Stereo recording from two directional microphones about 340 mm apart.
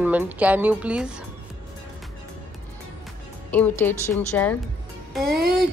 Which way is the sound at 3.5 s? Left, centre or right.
Centre.